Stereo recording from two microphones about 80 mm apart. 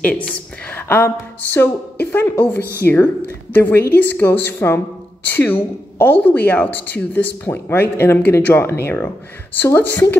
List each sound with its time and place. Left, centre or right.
0.0 s a woman's voice: centre